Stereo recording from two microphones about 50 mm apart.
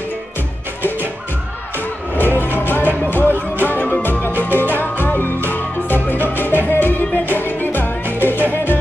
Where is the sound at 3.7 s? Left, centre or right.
Left.